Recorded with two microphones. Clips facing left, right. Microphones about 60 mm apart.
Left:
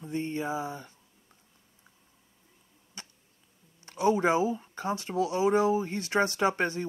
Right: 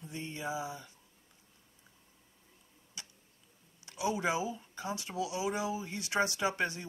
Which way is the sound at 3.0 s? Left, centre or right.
Left.